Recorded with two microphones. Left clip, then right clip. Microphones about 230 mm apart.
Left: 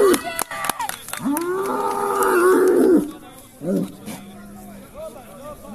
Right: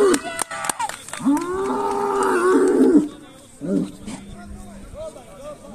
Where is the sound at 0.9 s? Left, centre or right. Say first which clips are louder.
Right 3 dB; left.